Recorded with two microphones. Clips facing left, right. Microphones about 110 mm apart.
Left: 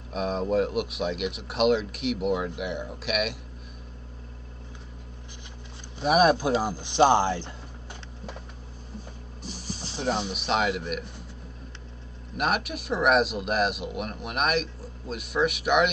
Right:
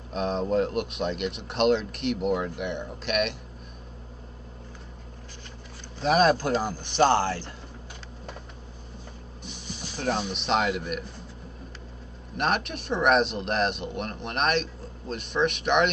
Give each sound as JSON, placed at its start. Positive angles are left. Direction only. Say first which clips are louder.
{"t": 0.1, "sound": "speech", "louder": "even", "side_deg": 5}
{"t": 5.9, "sound": "speech", "louder": "left 1 dB", "side_deg": 10}
{"t": 9.4, "sound": "vehicle", "louder": "left 3 dB", "side_deg": 30}
{"t": 9.9, "sound": "speech", "louder": "even", "side_deg": 0}
{"t": 12.4, "sound": "speech", "louder": "even", "side_deg": 5}